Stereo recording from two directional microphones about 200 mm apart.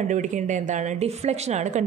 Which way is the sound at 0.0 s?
35° right (ahead or behind).